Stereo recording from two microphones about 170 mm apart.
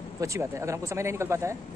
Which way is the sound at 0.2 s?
15° right (ahead or behind).